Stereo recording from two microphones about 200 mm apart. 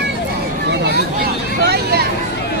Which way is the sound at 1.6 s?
55° right (ahead or behind).